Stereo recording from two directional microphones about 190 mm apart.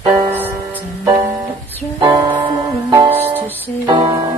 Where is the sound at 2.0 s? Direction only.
25° right (ahead or behind).